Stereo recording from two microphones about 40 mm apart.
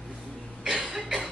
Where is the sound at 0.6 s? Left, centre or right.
Centre.